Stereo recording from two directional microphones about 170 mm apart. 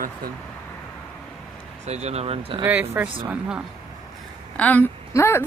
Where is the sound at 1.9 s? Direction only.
40° right (ahead or behind).